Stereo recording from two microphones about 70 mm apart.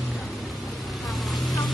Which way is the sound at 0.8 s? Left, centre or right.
Centre.